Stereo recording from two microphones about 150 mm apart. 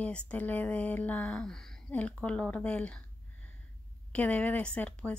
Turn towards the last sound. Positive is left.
turn(degrees=10)  # may be behind; listen again after turning